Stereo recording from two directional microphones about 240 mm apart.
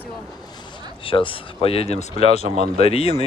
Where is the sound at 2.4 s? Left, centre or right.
Right.